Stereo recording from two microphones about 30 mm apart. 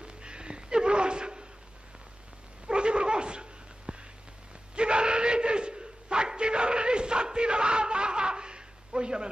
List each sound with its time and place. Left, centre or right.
0.0 s a sound: right
2.6 s dog: right
4.7 s gasp: right